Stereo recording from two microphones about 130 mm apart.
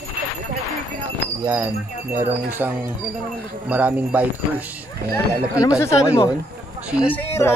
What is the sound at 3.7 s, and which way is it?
Speech, 10° right (ahead or behind).